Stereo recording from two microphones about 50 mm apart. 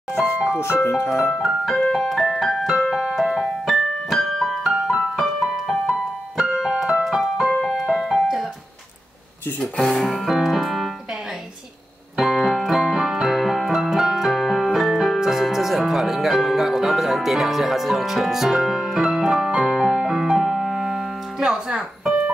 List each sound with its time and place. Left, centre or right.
0.8 s speech: left
1.3 s music: centre
1.8 s music: centre
2.3 s piano: centre
6.6 s keyboard: centre
7.1 s music: centre
9.9 s music: centre
12.2 s keyboard: centre